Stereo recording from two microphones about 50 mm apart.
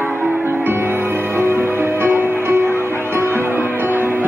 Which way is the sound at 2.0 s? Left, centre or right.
Right.